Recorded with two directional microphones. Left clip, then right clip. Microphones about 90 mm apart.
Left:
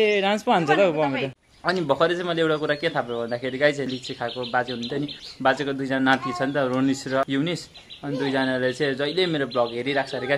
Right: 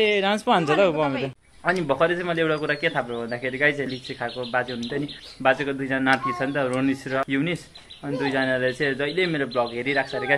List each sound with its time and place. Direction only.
0.0 s speech: 5° left (ahead or behind)
1.9 s a man's voice: 30° left (ahead or behind)
5.4 s a man's voice: 30° left (ahead or behind)
8.2 s a man's voice: 20° left (ahead or behind)
9.0 s a man's voice: 25° left (ahead or behind)